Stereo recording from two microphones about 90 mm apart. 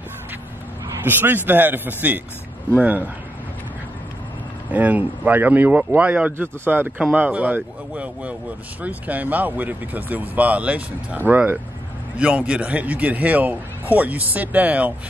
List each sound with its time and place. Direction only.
1.0 s speech: 20° right (ahead or behind)
4.6 s speech: 15° right (ahead or behind)